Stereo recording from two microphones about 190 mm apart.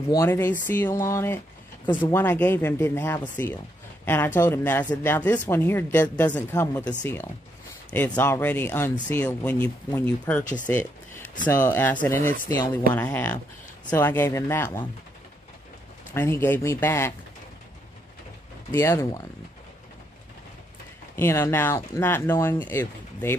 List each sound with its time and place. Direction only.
0.1 s speech: 15° left (ahead or behind)
16.1 s speech: 10° left (ahead or behind)
18.7 s speech: 15° left (ahead or behind)
21.2 s speech: 15° left (ahead or behind)